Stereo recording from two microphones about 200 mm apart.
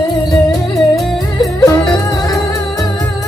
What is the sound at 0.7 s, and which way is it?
Music, centre (ahead or behind).